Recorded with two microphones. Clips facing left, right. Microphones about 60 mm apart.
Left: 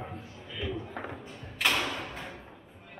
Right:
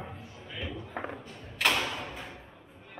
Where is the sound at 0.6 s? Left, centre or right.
Centre.